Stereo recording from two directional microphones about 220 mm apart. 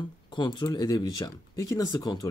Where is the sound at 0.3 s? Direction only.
20° left (ahead or behind).